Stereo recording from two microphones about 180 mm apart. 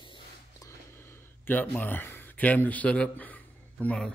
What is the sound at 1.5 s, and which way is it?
A man's voice, 10° left (ahead or behind).